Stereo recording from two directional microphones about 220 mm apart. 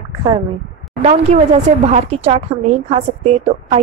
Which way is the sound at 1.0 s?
30° right (ahead or behind).